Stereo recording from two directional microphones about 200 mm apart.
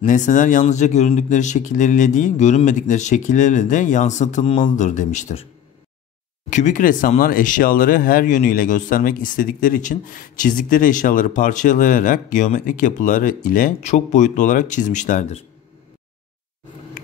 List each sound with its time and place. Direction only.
0.0 s speech: 40° left (ahead or behind)
6.5 s speech: 40° left (ahead or behind)